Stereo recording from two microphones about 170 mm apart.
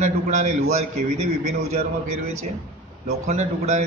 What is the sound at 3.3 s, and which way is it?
Speech, 40° right (ahead or behind).